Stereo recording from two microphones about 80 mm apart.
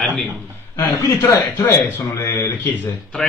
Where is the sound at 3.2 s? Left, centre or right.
Centre.